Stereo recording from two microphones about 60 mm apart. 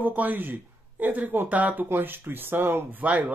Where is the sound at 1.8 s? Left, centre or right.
Right.